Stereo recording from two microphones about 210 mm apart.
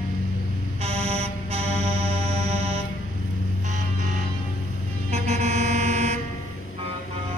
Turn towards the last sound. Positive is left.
turn(degrees=-35)  # may be behind; listen again after turning